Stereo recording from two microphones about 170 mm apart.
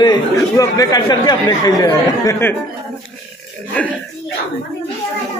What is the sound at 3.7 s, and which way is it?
Speech, 5° left (ahead or behind).